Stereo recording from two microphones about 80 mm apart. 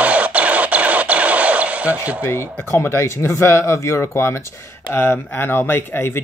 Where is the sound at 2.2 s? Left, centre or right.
Left.